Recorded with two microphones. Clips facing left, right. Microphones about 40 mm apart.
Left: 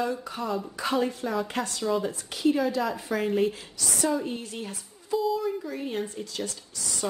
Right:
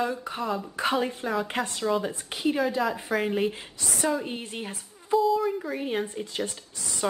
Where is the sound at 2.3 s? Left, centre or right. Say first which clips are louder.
Left 1 dB; right.